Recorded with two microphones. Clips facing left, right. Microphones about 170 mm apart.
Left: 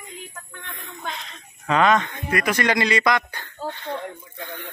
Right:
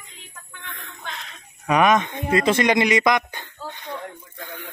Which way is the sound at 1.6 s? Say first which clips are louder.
Right 1 dB; 15° right (ahead or behind).